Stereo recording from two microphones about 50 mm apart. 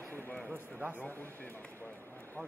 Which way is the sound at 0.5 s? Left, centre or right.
Right.